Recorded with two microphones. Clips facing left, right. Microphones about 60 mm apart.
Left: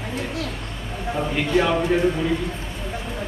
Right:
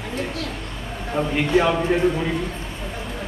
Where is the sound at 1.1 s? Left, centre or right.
Centre.